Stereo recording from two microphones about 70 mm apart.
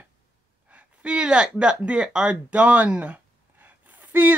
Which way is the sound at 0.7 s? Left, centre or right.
Centre.